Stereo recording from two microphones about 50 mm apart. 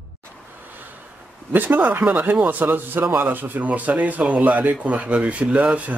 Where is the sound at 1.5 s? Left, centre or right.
Right.